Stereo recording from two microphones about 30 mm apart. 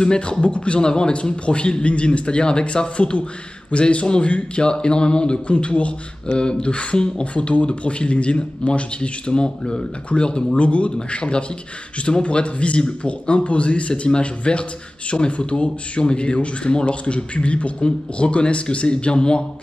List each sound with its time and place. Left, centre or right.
0.0 s speech: left
0.7 s a man's voice: left
1.3 s speech: left
10.6 s speech: left